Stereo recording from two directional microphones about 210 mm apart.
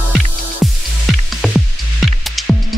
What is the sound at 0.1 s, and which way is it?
Music, centre (ahead or behind).